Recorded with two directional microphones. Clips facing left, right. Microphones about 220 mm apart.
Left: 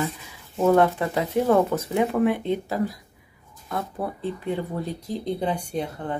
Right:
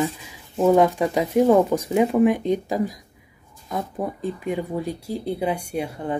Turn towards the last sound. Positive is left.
turn(degrees=-10)  # may be behind; listen again after turning